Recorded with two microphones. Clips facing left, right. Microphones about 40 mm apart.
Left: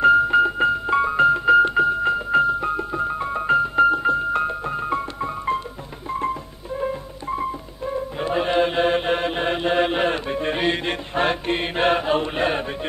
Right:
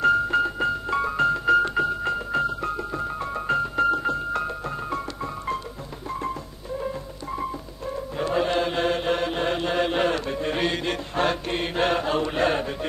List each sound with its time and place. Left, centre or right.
0.0 s music: left
2.3 s keyboard: centre
6.0 s music: left